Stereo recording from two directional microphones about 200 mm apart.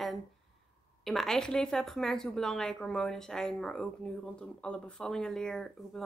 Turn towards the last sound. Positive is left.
turn(degrees=5)  # may be behind; listen again after turning